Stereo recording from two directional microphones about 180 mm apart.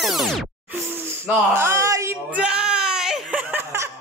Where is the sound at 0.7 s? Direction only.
10° right (ahead or behind).